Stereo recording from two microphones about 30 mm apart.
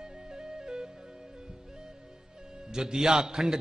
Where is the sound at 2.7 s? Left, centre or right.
Right.